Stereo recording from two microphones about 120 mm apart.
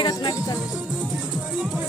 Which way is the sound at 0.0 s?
35° left (ahead or behind).